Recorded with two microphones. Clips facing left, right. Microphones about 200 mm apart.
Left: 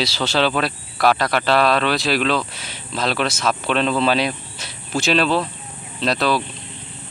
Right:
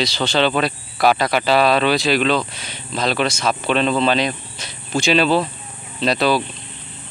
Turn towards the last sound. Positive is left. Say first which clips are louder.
# right 2 dB
turn(degrees=0)  # may be behind; listen again after turning